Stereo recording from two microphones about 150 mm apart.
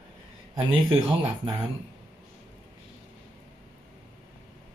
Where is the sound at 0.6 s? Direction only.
35° right (ahead or behind).